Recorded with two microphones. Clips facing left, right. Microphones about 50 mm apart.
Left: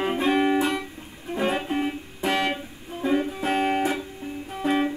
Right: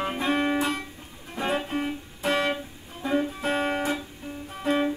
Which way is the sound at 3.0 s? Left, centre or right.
Centre.